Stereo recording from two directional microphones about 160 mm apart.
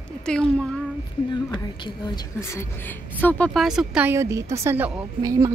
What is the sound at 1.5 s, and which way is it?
A woman's voice, 30° left (ahead or behind).